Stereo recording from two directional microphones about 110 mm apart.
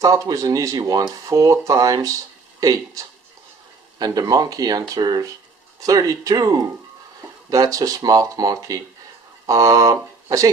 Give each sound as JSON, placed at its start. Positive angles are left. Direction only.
{"t": 0.0, "sound": "speech", "side_deg": -30}
{"t": 4.0, "sound": "speech", "side_deg": -35}